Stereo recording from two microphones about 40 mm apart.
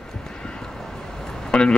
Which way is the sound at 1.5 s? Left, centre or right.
Left.